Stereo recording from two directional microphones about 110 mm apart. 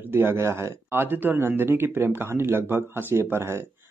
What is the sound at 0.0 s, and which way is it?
Speech, 20° right (ahead or behind).